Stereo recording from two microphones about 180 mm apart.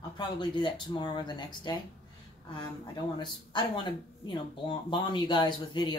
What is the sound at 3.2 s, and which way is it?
Speech, 25° left (ahead or behind).